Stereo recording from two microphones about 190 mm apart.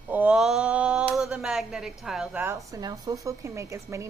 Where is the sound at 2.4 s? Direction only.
15° right (ahead or behind).